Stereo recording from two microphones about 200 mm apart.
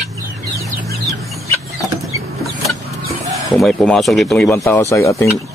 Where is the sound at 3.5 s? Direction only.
5° left (ahead or behind).